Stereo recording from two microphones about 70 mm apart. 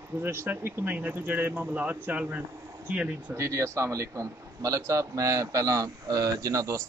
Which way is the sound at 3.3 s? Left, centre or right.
Right.